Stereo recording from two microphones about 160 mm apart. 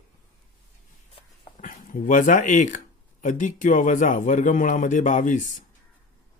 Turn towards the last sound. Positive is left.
turn(degrees=55)  # may be behind; listen again after turning